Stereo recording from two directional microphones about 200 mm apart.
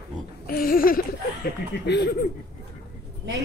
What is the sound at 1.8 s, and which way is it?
Speech, 60° left (ahead or behind).